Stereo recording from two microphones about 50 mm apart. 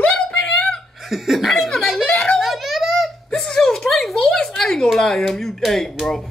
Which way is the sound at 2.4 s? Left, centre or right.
Centre.